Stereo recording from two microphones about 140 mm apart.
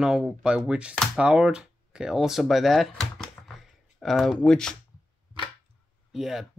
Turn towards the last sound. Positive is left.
turn(degrees=-5)  # may be behind; listen again after turning